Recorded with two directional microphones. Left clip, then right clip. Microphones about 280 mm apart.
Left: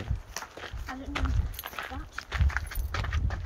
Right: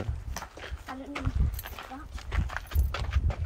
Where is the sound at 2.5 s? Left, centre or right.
Right.